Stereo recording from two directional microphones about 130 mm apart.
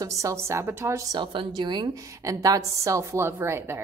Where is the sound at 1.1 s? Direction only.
40° right (ahead or behind).